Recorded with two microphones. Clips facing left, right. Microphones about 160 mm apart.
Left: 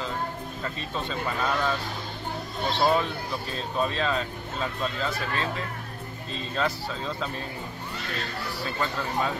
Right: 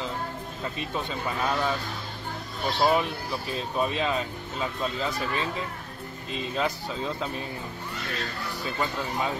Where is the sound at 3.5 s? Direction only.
15° right (ahead or behind).